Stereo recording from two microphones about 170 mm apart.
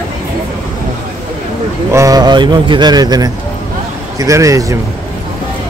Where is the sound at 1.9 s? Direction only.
20° right (ahead or behind).